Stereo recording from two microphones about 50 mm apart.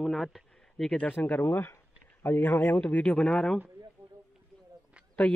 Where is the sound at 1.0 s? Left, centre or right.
Left.